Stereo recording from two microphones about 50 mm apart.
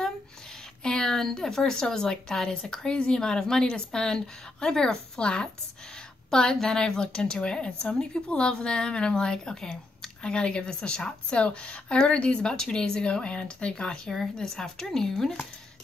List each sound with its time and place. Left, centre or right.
0.8 s a woman's voice: centre